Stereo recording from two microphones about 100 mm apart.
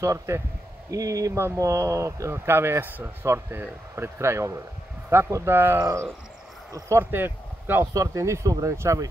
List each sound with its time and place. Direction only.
0.0 s speech: 30° right (ahead or behind)
7.8 s speech: 35° right (ahead or behind)